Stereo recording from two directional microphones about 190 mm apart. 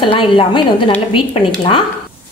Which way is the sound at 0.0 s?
25° left (ahead or behind).